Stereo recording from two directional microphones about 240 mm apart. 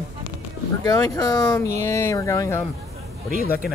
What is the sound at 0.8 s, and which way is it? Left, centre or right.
Speech, centre.